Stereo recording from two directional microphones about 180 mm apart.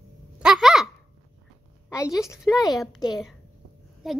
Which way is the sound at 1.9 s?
15° left (ahead or behind).